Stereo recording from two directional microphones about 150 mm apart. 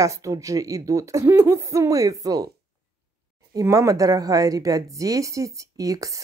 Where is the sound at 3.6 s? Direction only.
20° right (ahead or behind).